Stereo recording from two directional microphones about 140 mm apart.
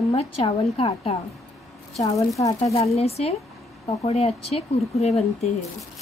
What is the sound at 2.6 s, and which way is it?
Speech, 45° left (ahead or behind).